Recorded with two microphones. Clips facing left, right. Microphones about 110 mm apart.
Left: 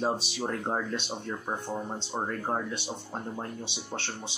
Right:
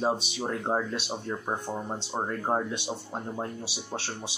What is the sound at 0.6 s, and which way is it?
Speech, 10° right (ahead or behind).